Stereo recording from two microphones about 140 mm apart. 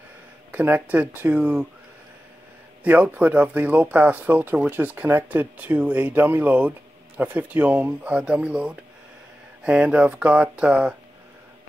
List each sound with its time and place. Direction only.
0.5 s speech: 10° right (ahead or behind)
2.8 s speech: 10° right (ahead or behind)